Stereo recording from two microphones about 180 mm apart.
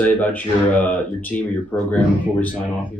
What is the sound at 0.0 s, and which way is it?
Speech, 10° left (ahead or behind).